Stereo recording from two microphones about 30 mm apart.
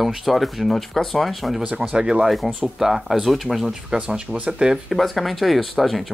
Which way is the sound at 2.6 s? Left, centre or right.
Centre.